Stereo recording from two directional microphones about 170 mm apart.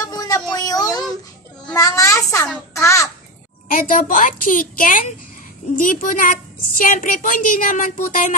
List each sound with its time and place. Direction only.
0.1 s a sound: 20° left (ahead or behind)
1.7 s a child's voice: 20° left (ahead or behind)
2.7 s babbling: 20° left (ahead or behind)
3.6 s a woman's voice: 55° left (ahead or behind)